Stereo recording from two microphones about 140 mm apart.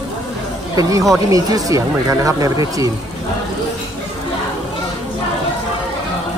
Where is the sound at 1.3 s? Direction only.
25° right (ahead or behind).